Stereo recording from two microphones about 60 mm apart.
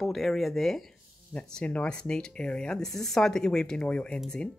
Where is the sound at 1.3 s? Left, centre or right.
Centre.